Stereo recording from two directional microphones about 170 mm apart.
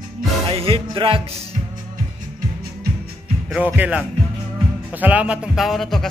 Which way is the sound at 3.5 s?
10° right (ahead or behind).